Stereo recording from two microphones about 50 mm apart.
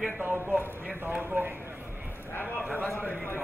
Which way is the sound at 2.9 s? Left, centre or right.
Left.